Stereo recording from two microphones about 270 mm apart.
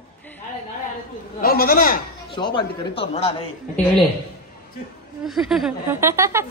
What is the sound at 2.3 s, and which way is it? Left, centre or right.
A man's voice, centre.